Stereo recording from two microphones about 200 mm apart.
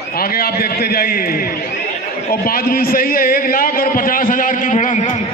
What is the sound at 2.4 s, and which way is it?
A man's voice, 45° left (ahead or behind).